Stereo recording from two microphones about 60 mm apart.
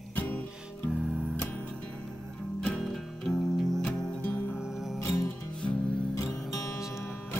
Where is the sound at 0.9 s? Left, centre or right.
Centre.